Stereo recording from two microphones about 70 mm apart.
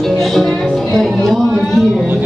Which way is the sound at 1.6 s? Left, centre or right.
Centre.